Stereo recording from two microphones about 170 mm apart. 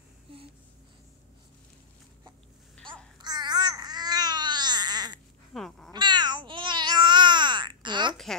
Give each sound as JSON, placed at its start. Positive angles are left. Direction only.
{"t": 3.2, "sound": "babbling", "side_deg": -25}
{"t": 5.5, "sound": "cat", "side_deg": 0}
{"t": 5.9, "sound": "babbling", "side_deg": -25}